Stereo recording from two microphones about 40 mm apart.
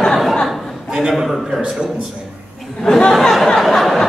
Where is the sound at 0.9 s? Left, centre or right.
Centre.